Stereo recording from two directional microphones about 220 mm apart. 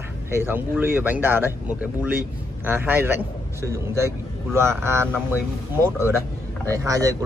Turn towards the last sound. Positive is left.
turn(degrees=-15)  # may be behind; listen again after turning